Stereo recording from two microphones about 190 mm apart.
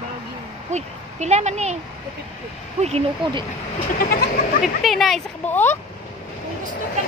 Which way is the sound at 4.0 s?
55° left (ahead or behind).